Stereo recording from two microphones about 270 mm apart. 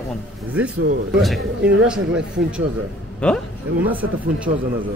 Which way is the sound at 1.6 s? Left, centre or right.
Right.